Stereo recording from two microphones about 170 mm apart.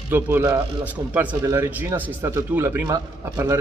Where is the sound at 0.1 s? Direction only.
15° right (ahead or behind).